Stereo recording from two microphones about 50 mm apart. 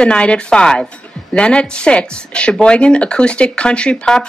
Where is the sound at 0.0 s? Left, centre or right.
Left.